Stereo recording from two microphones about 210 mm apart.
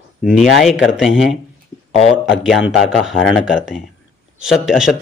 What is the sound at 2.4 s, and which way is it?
A man's voice, centre (ahead or behind).